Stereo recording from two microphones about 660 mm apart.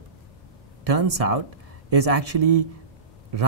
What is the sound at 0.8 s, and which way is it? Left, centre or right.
Speech, right.